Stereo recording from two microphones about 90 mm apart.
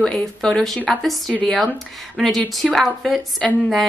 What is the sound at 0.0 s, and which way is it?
A woman's voice, 10° left (ahead or behind).